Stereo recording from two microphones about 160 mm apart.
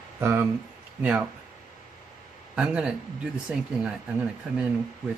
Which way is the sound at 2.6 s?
5° right (ahead or behind).